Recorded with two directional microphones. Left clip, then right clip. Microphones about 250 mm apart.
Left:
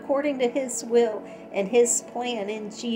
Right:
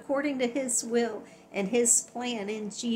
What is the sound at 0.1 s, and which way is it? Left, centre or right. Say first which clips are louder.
A woman's voice: left 5 dB; centre.